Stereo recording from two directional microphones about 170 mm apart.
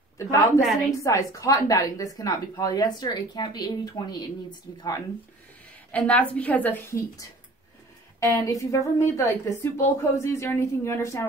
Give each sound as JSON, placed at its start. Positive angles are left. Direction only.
{"t": 0.2, "sound": "speech", "side_deg": 20}
{"t": 5.9, "sound": "a woman's voice", "side_deg": 10}